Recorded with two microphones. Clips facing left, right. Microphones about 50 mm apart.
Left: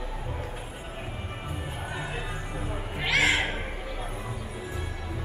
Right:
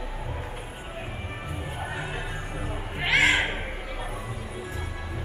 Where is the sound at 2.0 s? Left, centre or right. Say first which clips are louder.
Right 1 dB; right.